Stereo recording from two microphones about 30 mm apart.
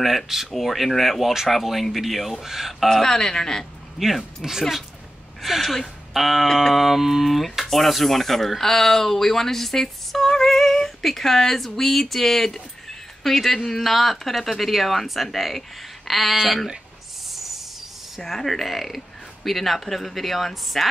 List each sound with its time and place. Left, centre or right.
0.0 s speech: centre
1.5 s speech: centre
2.4 s speech: centre
3.0 s speech: centre
4.5 s speech: centre
5.6 s speech: centre
6.1 s speech: centre
6.4 s speech: centre
6.7 s speech: centre
17.3 s a sound: centre
18.2 s speech: centre